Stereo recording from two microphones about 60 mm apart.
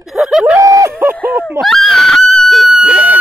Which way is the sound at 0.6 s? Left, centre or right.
Right.